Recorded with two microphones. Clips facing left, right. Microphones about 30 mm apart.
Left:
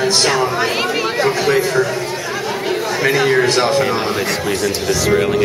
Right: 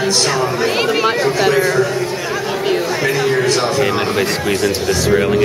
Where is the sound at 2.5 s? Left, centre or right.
Centre.